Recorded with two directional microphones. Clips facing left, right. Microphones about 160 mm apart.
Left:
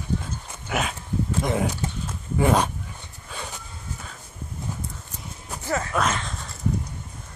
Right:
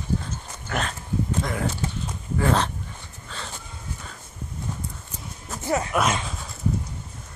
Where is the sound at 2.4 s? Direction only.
15° left (ahead or behind).